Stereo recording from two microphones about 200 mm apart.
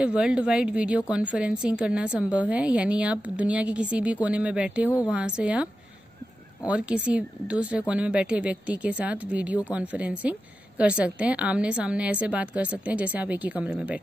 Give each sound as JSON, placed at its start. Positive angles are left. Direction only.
{"t": 0.0, "sound": "a woman's voice", "side_deg": -5}
{"t": 6.7, "sound": "a woman's voice", "side_deg": -5}